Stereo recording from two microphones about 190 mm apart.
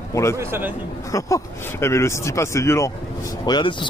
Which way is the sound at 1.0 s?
15° left (ahead or behind).